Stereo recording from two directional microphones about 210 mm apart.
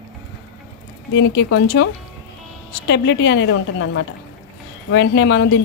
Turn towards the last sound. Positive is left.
turn(degrees=55)  # may be behind; listen again after turning